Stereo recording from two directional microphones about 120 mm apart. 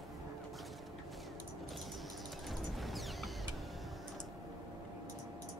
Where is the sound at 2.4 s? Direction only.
Centre (ahead or behind).